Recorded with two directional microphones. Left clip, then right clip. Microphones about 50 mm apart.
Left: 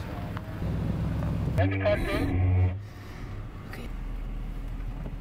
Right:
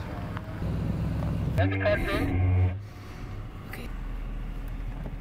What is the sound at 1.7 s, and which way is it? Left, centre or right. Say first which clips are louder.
Speech: even; right.